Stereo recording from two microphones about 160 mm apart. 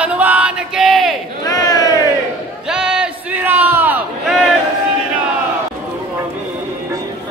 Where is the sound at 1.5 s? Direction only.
25° left (ahead or behind).